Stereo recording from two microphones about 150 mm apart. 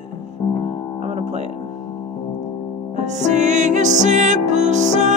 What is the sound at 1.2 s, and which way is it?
Music, 45° right (ahead or behind).